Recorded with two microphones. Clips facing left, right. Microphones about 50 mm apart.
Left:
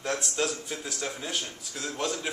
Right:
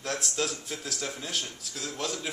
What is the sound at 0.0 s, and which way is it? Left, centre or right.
Speech, centre.